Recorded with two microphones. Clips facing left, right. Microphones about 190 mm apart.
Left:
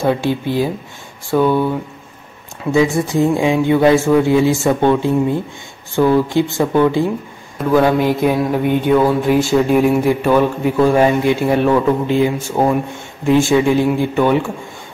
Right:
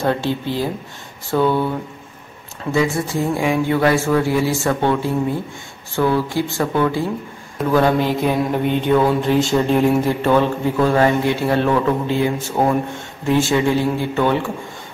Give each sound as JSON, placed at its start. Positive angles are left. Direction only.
{"t": 0.0, "sound": "speech", "side_deg": 10}
{"t": 2.6, "sound": "speech", "side_deg": 15}